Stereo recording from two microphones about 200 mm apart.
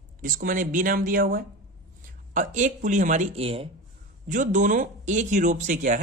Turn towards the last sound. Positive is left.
turn(degrees=-40)  # may be behind; listen again after turning